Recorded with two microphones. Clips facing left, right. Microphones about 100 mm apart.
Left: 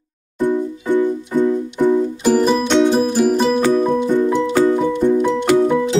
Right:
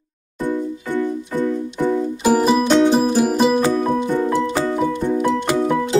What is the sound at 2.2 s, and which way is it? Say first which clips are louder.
Music: right 1 dB; 5° right (ahead or behind).